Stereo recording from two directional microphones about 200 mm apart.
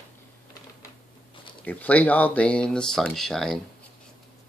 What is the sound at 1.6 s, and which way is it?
Speech, 5° left (ahead or behind).